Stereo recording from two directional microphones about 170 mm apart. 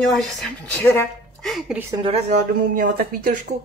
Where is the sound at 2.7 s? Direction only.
55° right (ahead or behind).